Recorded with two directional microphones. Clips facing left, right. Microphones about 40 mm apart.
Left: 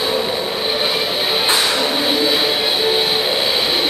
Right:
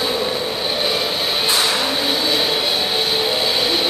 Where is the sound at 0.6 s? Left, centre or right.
Centre.